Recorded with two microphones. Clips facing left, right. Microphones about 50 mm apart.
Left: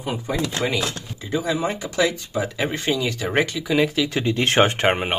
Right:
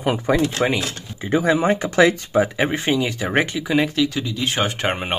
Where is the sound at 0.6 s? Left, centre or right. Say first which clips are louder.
Right 4 dB; right.